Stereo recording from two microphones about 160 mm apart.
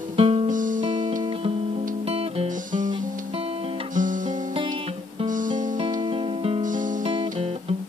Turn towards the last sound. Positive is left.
turn(degrees=-30)  # may be behind; listen again after turning